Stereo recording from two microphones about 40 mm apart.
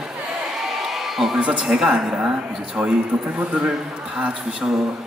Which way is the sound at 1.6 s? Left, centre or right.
Centre.